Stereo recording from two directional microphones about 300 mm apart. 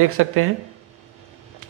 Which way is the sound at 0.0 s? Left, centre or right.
Right.